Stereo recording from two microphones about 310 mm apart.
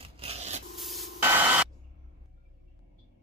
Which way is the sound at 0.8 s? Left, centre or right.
Centre.